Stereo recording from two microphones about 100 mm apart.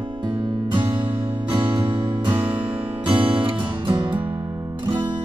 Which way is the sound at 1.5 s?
55° right (ahead or behind).